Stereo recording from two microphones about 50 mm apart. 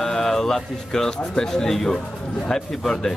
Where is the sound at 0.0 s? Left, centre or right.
Centre.